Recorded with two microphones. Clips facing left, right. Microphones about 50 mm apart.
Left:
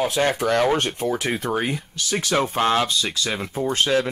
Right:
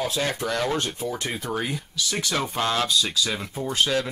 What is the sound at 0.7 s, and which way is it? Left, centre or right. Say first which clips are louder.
Speech: left 4 dB; left.